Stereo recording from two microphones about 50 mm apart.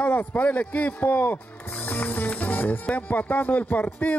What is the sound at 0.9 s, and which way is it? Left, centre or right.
Music, left.